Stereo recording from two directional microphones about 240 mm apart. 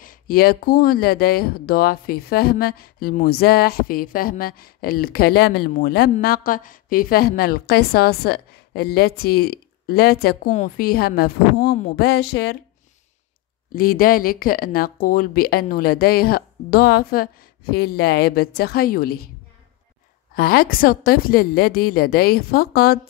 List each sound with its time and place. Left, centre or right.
0.0 s speech: left
13.7 s speech: left
20.3 s speech: left